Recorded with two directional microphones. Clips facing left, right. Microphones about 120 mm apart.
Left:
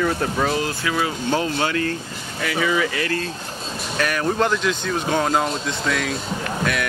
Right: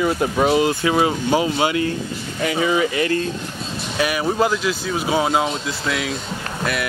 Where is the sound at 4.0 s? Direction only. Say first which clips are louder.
Right 2 dB; 10° right (ahead or behind).